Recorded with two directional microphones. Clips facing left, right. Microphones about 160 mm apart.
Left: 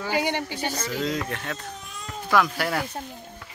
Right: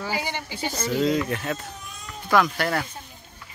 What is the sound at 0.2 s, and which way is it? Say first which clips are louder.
Speech: left 5 dB; 60° left (ahead or behind).